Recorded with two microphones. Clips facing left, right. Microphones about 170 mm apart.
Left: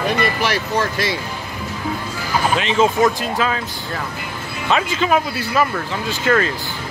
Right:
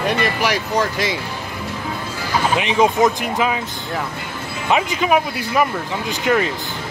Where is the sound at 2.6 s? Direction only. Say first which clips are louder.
Right 1 dB; 15° right (ahead or behind).